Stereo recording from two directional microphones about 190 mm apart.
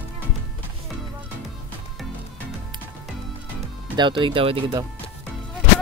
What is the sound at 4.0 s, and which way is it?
Speech, 25° right (ahead or behind).